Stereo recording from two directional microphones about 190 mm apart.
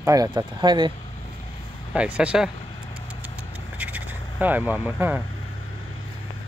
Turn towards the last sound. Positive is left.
turn(degrees=-10)  # may be behind; listen again after turning